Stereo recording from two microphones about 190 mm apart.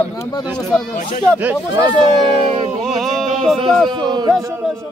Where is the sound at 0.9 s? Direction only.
40° left (ahead or behind).